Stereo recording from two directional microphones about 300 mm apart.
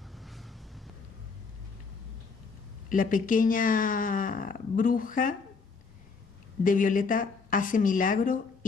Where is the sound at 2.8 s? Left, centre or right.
Left.